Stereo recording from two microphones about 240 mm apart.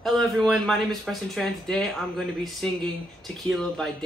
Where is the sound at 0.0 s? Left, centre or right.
Centre.